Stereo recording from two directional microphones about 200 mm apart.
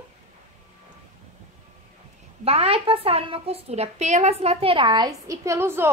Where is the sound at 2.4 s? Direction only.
30° right (ahead or behind).